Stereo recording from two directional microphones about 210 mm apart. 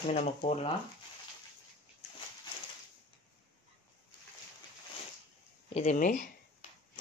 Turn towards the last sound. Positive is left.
turn(degrees=40)  # may be behind; listen again after turning